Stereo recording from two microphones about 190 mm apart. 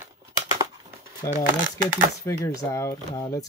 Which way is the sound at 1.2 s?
15° left (ahead or behind).